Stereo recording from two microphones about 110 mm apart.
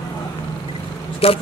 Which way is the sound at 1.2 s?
60° left (ahead or behind).